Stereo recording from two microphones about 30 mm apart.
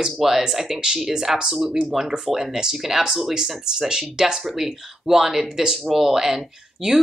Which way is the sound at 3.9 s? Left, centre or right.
Centre.